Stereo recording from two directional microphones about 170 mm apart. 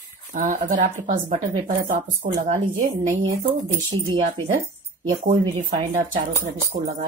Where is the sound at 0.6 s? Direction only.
45° right (ahead or behind).